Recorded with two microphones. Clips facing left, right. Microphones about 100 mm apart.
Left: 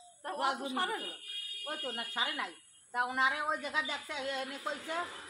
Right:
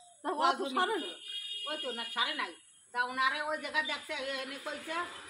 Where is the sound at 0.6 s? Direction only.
20° right (ahead or behind).